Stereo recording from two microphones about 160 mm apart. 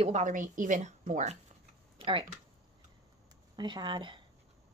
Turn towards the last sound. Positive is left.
turn(degrees=-30)  # may be behind; listen again after turning